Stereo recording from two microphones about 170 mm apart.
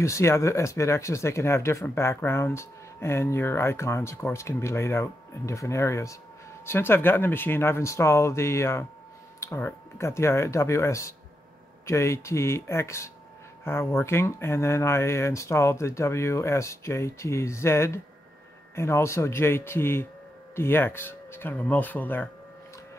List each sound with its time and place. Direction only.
0.0 s speech: 15° left (ahead or behind)